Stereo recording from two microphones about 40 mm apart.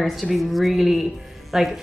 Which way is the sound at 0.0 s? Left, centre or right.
Centre.